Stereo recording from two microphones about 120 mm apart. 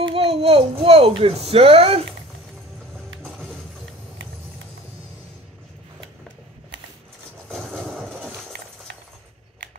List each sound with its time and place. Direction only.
0.1 s a child's voice: 55° right (ahead or behind)
3.3 s music: 5° left (ahead or behind)
7.4 s a sound: 5° left (ahead or behind)